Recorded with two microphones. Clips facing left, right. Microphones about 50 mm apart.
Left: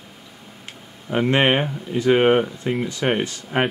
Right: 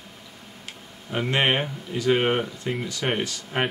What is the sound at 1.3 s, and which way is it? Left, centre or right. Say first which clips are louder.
Speech: left 4 dB; centre.